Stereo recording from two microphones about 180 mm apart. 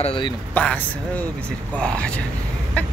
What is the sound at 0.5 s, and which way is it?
Speech, 10° left (ahead or behind).